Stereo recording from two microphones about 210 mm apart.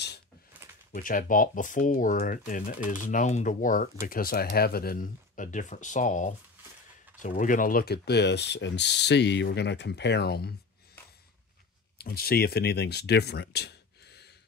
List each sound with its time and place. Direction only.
0.9 s speech: 40° left (ahead or behind)
7.2 s ratchet: 35° left (ahead or behind)
12.0 s speech: 50° left (ahead or behind)